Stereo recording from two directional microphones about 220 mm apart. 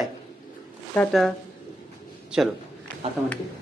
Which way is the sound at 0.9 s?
Centre (ahead or behind).